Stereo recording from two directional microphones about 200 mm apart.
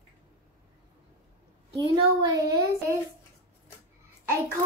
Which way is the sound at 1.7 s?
20° right (ahead or behind).